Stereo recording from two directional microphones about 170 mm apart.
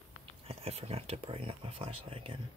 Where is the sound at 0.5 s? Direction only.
35° right (ahead or behind).